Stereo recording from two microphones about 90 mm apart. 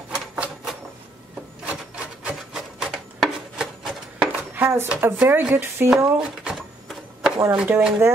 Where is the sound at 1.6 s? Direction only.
15° right (ahead or behind).